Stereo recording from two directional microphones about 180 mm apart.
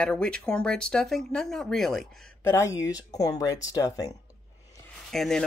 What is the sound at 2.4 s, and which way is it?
Speech, 15° left (ahead or behind).